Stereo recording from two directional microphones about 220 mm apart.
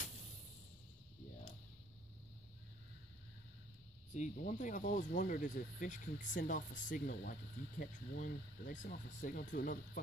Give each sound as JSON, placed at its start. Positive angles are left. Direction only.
{"t": 4.1, "sound": "speech", "side_deg": 35}